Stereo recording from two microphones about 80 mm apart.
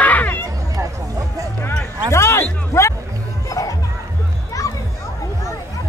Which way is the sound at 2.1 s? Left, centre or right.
Left.